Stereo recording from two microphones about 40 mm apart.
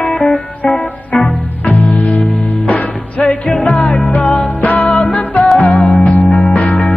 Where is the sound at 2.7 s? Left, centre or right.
Left.